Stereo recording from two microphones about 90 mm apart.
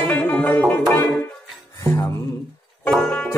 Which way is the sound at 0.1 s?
20° left (ahead or behind).